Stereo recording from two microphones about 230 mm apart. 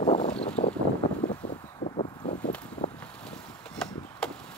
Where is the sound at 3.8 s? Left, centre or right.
Centre.